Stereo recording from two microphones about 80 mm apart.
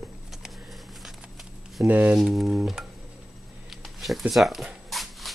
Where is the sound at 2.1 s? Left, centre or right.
Centre.